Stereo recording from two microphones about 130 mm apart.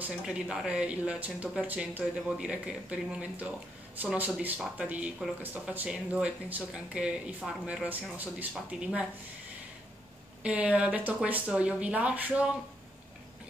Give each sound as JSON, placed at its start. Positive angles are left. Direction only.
{"t": 0.0, "sound": "speech", "side_deg": -5}
{"t": 10.4, "sound": "speech", "side_deg": -10}